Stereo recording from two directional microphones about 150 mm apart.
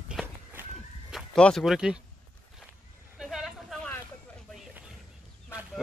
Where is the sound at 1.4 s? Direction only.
Centre (ahead or behind).